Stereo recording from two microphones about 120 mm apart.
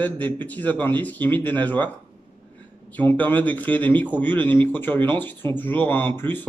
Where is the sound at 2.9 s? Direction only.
15° left (ahead or behind).